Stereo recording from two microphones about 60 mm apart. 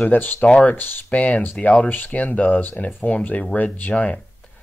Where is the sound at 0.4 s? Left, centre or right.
Centre.